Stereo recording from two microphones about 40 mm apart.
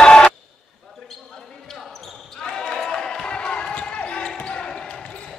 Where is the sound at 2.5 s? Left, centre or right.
Centre.